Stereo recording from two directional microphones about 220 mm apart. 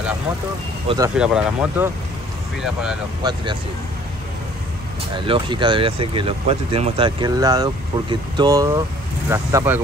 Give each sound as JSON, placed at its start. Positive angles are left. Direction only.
{"t": 0.8, "sound": "speech", "side_deg": -15}
{"t": 1.1, "sound": "speech", "side_deg": -5}
{"t": 3.2, "sound": "speech", "side_deg": -20}
{"t": 5.1, "sound": "speech", "side_deg": -20}